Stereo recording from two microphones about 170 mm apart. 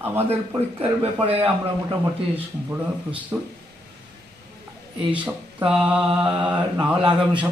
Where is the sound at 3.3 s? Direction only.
20° right (ahead or behind).